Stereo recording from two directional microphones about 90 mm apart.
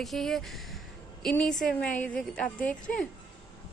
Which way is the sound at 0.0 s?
Centre (ahead or behind).